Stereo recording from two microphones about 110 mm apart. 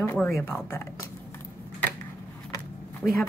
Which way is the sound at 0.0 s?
15° left (ahead or behind).